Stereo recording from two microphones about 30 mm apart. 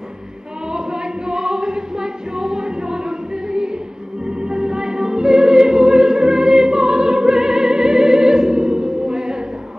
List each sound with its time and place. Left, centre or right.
0.7 s choir: right
4.3 s music: right